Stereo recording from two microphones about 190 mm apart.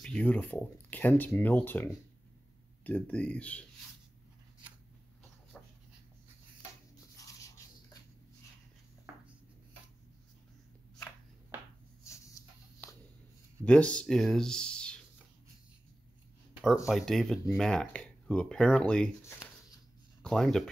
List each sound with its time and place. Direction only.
0.0 s speech: 5° left (ahead or behind)
5.5 s dog: 5° left (ahead or behind)
7.2 s a sound: 15° left (ahead or behind)
12.0 s dog: 15° left (ahead or behind)
13.7 s speech: 5° left (ahead or behind)
16.6 s speech: centre (ahead or behind)